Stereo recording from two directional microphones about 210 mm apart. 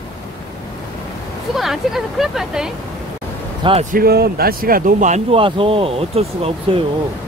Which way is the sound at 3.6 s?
30° right (ahead or behind).